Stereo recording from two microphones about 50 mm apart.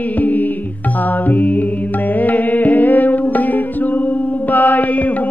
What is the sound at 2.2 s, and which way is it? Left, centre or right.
Music, left.